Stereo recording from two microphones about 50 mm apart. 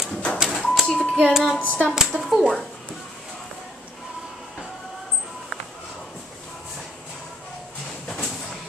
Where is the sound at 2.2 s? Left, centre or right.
Centre.